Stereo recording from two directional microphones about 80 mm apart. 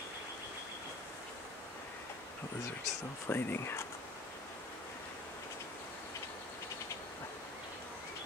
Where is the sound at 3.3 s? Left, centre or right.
Left.